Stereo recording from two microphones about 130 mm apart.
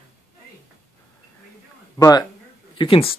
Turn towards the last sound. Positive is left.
turn(degrees=45)  # may be behind; listen again after turning